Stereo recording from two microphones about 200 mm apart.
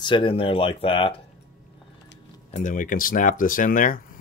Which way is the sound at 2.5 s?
40° left (ahead or behind).